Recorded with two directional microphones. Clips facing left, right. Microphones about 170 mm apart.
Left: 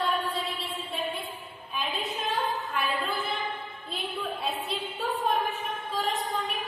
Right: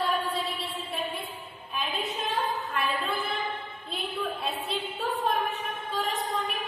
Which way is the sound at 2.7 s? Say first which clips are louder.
Even; centre (ahead or behind).